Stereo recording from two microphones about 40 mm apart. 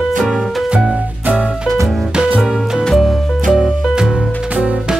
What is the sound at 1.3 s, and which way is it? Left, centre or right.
Music, right.